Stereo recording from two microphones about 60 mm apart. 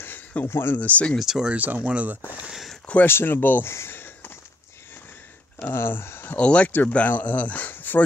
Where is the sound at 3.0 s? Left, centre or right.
Left.